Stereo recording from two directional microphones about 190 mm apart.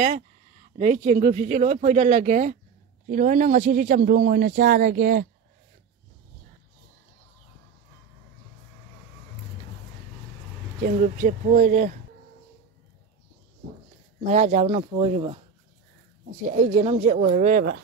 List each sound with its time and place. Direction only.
0.7 s speech: 40° right (ahead or behind)
10.8 s speech: 45° right (ahead or behind)
14.2 s speech: 35° right (ahead or behind)
16.5 s speech: 35° right (ahead or behind)